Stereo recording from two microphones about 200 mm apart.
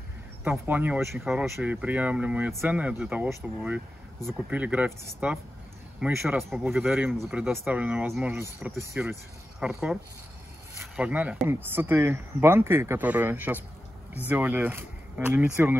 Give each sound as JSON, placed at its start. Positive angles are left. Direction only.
{"t": 0.4, "sound": "speech", "side_deg": -10}